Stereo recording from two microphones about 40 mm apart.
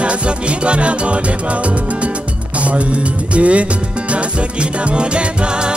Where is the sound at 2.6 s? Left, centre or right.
Right.